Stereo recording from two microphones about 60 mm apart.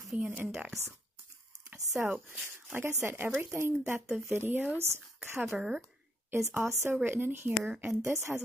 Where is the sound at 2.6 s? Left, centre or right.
Right.